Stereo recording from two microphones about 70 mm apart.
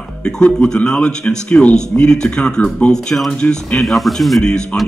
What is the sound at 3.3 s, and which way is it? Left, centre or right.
Speech, centre.